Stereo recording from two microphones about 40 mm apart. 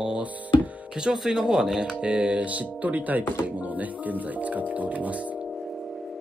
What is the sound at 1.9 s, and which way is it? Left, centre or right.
Speech, right.